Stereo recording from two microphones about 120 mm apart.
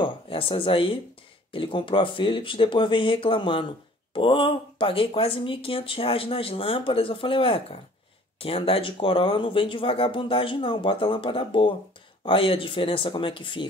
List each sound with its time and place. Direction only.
0.0 s speech: 50° left (ahead or behind)